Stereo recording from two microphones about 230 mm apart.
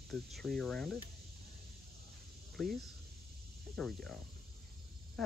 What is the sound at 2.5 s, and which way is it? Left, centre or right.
Speech, centre.